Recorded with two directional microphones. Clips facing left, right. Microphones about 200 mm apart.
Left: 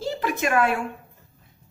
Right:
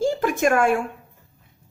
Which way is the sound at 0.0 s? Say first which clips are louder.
Right 6 dB; 45° right (ahead or behind).